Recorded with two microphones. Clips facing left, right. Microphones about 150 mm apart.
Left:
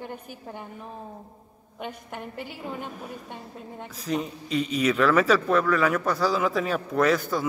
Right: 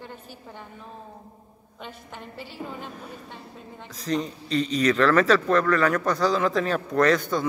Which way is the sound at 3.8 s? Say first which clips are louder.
Right 2 dB; 10° left (ahead or behind).